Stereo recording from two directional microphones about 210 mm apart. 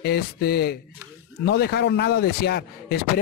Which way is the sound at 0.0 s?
50° left (ahead or behind).